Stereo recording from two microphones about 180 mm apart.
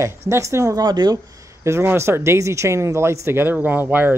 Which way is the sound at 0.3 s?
15° right (ahead or behind).